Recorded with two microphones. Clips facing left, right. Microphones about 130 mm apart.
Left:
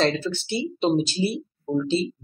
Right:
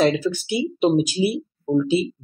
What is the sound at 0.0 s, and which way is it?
Speech, 10° right (ahead or behind).